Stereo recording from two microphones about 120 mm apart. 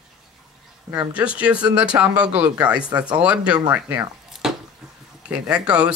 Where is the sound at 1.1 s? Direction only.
10° right (ahead or behind).